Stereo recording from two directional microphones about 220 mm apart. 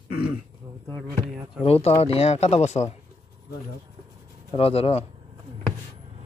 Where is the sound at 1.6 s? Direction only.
25° left (ahead or behind).